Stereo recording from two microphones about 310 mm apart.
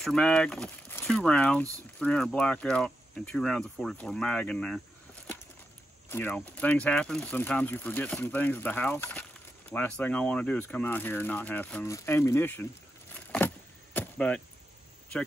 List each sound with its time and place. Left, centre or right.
0.0 s speech: centre
13.1 s a sound: centre
13.9 s arrow: centre